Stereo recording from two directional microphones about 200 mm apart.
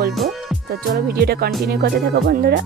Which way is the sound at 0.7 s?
50° right (ahead or behind).